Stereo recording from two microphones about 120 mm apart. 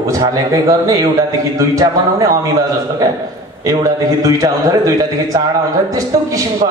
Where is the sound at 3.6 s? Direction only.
30° right (ahead or behind).